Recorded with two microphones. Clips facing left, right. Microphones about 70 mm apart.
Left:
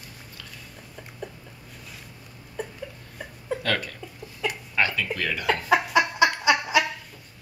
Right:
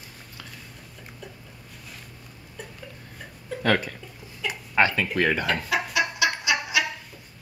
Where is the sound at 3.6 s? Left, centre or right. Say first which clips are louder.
Right 7 dB; centre.